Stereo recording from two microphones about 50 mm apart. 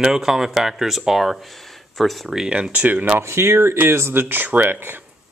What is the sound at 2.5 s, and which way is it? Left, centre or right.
Speech, right.